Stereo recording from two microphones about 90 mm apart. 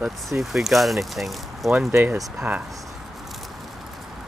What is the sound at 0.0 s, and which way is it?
Speech, 5° right (ahead or behind).